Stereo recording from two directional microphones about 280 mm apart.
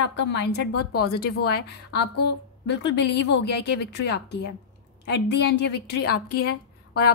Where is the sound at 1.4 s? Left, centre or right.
Left.